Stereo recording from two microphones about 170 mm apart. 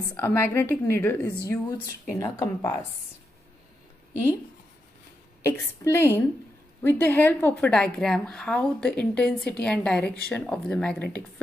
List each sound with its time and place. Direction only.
0.1 s a woman's voice: 15° left (ahead or behind)
5.4 s a woman's voice: 15° left (ahead or behind)